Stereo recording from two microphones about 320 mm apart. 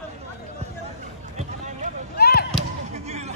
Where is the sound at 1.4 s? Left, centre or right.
Right.